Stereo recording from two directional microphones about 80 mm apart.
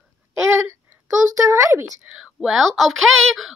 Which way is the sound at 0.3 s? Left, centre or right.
Right.